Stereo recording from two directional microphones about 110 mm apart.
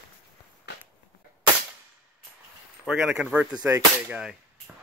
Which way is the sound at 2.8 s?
5° right (ahead or behind).